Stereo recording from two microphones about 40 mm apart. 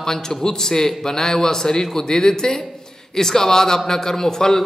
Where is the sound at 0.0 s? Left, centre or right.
Centre.